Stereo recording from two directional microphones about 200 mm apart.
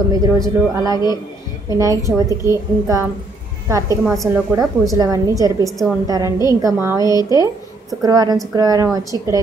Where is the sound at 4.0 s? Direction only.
Centre (ahead or behind).